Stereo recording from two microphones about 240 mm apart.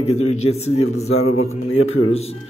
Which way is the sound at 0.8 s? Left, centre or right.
Left.